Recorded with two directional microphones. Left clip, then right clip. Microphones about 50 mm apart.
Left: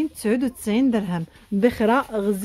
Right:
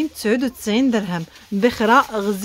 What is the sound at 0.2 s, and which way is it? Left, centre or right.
Speech, centre.